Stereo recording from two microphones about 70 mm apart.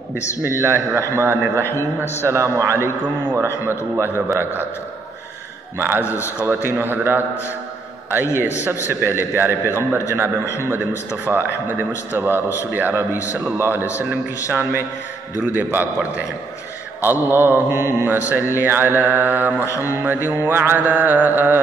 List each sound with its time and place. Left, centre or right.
0.6 s a man's voice: right
5.8 s a man's voice: right
6.0 s a man's voice: left
6.4 s a man's voice: right
8.4 s a man's voice: right